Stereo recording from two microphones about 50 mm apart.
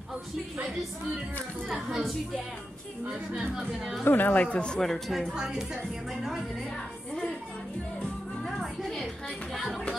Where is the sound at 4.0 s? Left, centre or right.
Left.